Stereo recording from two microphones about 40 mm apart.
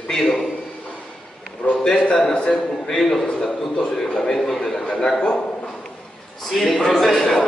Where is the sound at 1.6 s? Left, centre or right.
Left.